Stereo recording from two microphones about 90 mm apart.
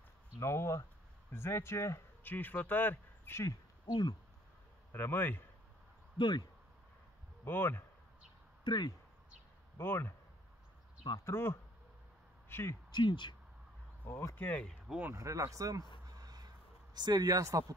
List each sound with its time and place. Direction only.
0.4 s speech: 30° left (ahead or behind)
4.9 s speech: 20° left (ahead or behind)
6.1 s speech: 55° left (ahead or behind)
7.4 s speech: 25° left (ahead or behind)
8.6 s speech: 55° left (ahead or behind)
9.8 s speech: 25° left (ahead or behind)
11.2 s speech: 25° left (ahead or behind)
12.4 s a sound: 25° left (ahead or behind)
12.9 s speech: 60° left (ahead or behind)
14.0 s speech: 30° left (ahead or behind)
14.3 s speech: 15° left (ahead or behind)
15.1 s speech: 35° right (ahead or behind)
16.2 s a sound: 50° right (ahead or behind)